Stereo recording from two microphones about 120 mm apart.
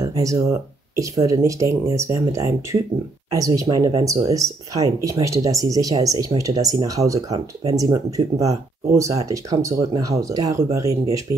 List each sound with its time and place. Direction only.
0.0 s speech: 25° right (ahead or behind)